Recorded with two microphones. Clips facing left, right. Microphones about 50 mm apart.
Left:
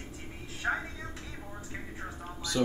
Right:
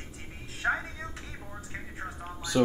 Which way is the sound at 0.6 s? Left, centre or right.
Centre.